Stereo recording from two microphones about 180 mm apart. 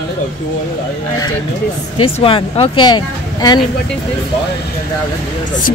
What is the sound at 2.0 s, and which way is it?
Speech, 30° left (ahead or behind).